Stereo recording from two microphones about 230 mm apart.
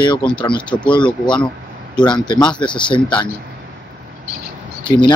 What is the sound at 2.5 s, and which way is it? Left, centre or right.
Speech, left.